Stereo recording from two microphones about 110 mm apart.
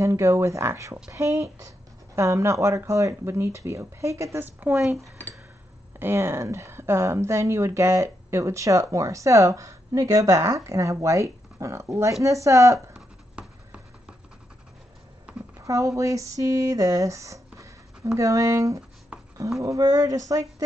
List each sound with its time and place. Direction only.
0.0 s speech: 30° right (ahead or behind)
4.6 s speech: 15° right (ahead or behind)
5.9 s speech: 20° right (ahead or behind)
12.7 s writing: 5° right (ahead or behind)
15.5 s speech: 30° right (ahead or behind)